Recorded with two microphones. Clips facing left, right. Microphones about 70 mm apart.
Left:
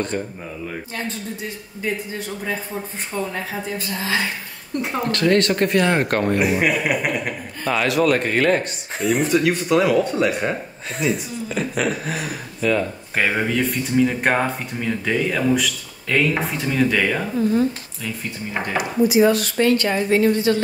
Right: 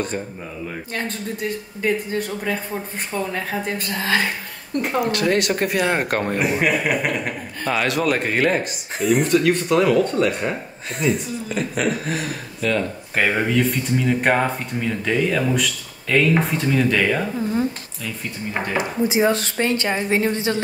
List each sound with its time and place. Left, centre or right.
1.8 s speech: right
3.6 s a woman's voice: right
5.0 s speech: centre
18.8 s speech: right